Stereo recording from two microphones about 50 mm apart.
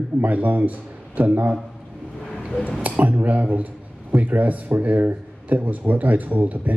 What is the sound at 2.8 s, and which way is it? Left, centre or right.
A man's voice, right.